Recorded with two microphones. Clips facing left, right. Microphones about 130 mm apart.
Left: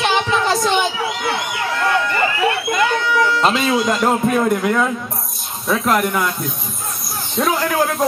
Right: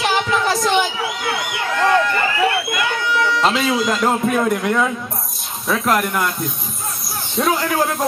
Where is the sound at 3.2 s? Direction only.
Centre (ahead or behind).